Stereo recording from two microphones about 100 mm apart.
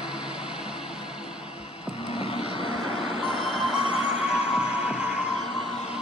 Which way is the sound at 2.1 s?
70° left (ahead or behind).